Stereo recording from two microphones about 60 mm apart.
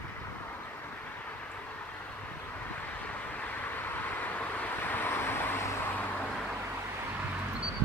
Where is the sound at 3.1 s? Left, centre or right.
Left.